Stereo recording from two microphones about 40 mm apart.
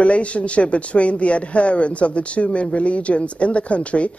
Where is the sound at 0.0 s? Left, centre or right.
Left.